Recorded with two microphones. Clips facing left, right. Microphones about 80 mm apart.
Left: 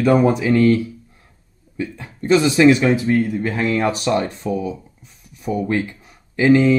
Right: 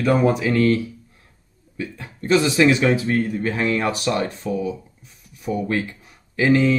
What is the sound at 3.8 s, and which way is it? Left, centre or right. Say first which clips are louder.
Speech: left 3 dB; left.